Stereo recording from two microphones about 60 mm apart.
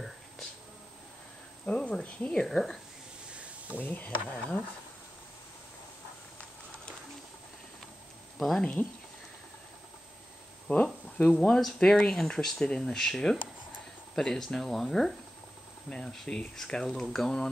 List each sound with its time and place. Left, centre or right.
1.7 s speech: centre
3.3 s a sound: right
3.8 s speech: left
4.3 s speech: centre
8.4 s speech: centre
10.7 s speech: centre